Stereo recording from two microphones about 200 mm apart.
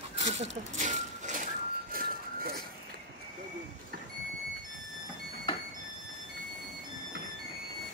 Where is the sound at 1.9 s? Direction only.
50° right (ahead or behind).